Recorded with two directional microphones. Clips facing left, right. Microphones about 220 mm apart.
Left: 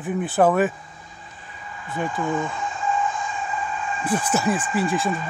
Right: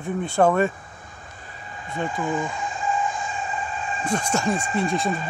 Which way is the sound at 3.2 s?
30° right (ahead or behind).